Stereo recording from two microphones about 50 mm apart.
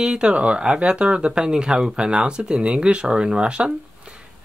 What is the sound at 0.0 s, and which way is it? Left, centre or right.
Speech, centre.